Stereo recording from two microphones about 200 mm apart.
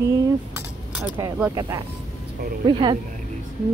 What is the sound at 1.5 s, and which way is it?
Speech, 20° right (ahead or behind).